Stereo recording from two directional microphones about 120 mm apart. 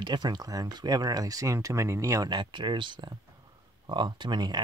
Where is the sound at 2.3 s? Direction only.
40° right (ahead or behind).